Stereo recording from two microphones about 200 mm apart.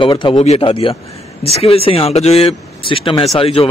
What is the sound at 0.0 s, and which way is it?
Speech, 25° left (ahead or behind).